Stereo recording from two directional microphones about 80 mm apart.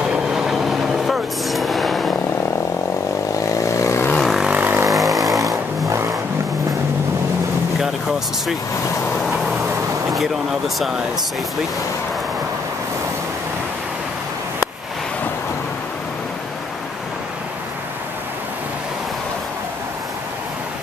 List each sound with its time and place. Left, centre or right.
0.0 s train: centre
3.4 s vehicle: left
4.2 s vehicle: centre
4.5 s vehicle: right
4.9 s vehicle: centre
5.9 s vehicle: right
9.2 s vehicle: centre